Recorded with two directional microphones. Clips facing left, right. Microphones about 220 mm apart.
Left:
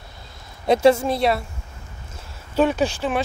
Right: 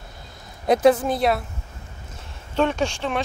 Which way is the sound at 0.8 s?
Centre (ahead or behind).